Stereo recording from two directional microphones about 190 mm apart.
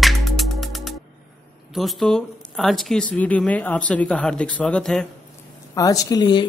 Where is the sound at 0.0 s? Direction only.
Centre (ahead or behind).